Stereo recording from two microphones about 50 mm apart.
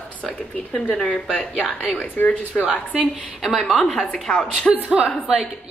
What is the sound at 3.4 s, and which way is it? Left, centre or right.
A woman's voice, centre.